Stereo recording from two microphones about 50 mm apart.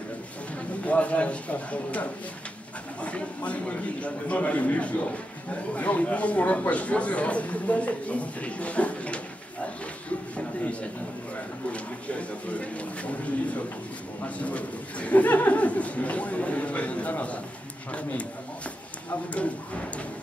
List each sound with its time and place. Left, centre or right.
0.8 s speech: left
10.0 s a sound: left
11.7 s speech: left